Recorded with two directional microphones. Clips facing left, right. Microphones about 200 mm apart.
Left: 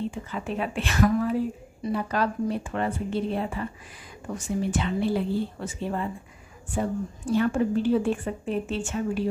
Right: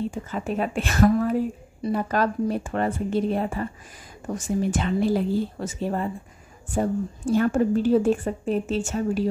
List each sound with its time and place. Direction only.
0.1 s a woman's voice: 45° right (ahead or behind)